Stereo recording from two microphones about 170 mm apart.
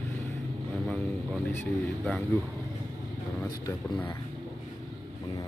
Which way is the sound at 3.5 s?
20° left (ahead or behind).